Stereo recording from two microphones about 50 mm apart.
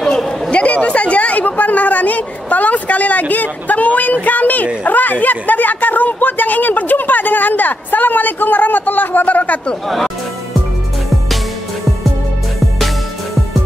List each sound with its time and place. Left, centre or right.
0.5 s a woman's voice: left
9.8 s speech: centre